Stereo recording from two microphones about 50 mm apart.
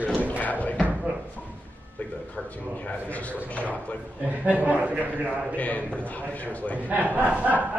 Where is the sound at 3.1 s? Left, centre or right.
Left.